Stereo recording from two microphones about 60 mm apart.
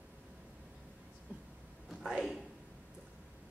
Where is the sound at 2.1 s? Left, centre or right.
Centre.